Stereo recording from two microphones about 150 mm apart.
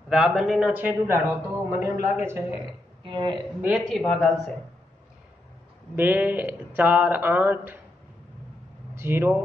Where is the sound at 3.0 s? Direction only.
30° right (ahead or behind).